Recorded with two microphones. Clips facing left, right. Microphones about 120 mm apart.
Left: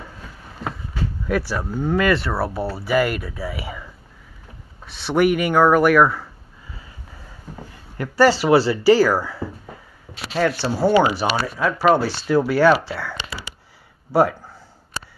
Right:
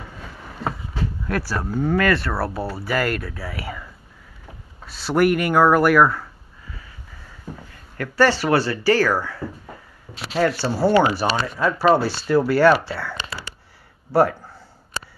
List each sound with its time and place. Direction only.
1.2 s speech: 5° left (ahead or behind)
8.0 s speech: 10° left (ahead or behind)
10.4 s speech: centre (ahead or behind)
10.9 s speech: 20° left (ahead or behind)
11.3 s speech: 5° left (ahead or behind)
13.3 s a sound: 15° left (ahead or behind)